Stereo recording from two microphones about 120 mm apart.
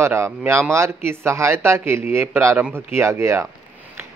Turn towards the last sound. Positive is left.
turn(degrees=-25)  # may be behind; listen again after turning